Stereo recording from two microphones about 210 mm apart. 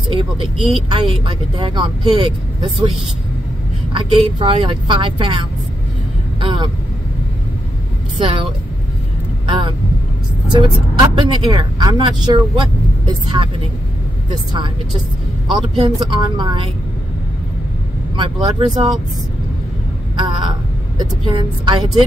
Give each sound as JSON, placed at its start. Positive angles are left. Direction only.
{"t": 0.1, "sound": "speech", "side_deg": -25}
{"t": 3.9, "sound": "speech", "side_deg": -25}
{"t": 6.4, "sound": "speech", "side_deg": -25}
{"t": 8.2, "sound": "speech", "side_deg": -25}
{"t": 10.5, "sound": "speech", "side_deg": -20}
{"t": 15.5, "sound": "speech", "side_deg": -20}
{"t": 18.1, "sound": "speech", "side_deg": -25}
{"t": 20.2, "sound": "a sound", "side_deg": -20}
{"t": 21.0, "sound": "speech", "side_deg": -20}